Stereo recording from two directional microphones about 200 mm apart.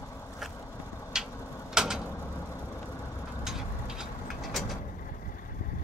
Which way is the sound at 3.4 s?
5° right (ahead or behind).